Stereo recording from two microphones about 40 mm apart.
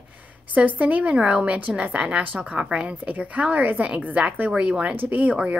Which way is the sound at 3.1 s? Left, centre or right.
Right.